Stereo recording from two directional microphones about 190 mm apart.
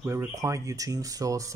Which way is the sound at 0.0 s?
15° right (ahead or behind).